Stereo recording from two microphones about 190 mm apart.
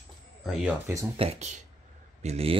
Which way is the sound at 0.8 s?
15° right (ahead or behind).